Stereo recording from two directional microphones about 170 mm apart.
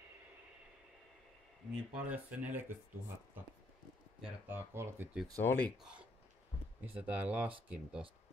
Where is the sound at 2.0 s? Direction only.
10° right (ahead or behind).